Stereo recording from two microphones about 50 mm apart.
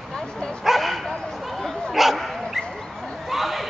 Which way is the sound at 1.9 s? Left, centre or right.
Centre.